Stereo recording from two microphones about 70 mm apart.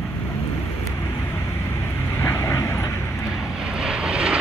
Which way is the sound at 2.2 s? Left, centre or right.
Left.